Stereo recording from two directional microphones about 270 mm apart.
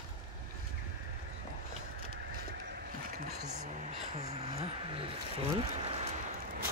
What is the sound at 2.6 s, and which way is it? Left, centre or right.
Boat, right.